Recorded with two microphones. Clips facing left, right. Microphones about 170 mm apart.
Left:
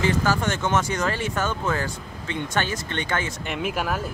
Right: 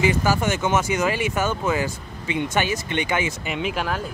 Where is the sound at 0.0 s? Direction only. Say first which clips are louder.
Right 2 dB; 10° right (ahead or behind).